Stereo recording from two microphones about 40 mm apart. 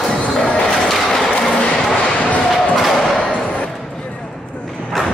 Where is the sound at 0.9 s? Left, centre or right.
Centre.